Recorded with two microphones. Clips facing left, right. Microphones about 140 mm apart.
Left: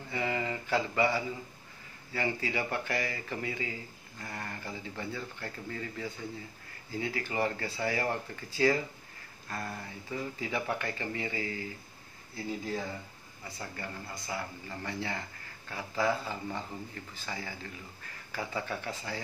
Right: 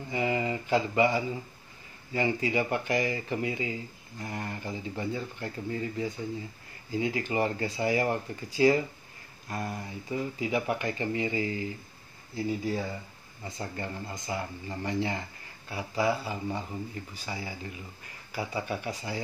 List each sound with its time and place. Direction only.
0.1 s speech: 20° right (ahead or behind)
13.4 s speech: 25° right (ahead or behind)